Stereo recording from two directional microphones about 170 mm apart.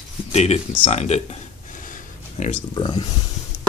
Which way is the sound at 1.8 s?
50° left (ahead or behind).